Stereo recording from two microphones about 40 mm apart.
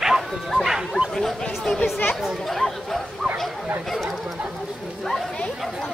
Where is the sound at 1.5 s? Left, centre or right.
Centre.